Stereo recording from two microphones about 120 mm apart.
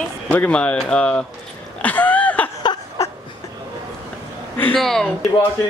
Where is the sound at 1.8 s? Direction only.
15° left (ahead or behind).